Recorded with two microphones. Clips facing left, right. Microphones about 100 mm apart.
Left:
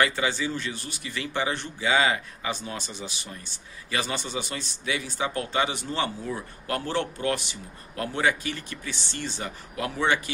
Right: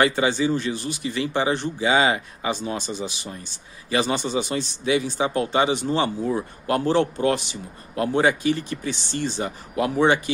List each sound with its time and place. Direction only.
0.0 s speech: 20° right (ahead or behind)